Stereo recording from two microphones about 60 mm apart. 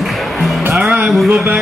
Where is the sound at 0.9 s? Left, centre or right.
Right.